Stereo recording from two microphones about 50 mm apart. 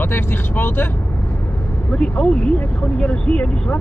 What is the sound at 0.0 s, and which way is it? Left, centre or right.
Speech, left.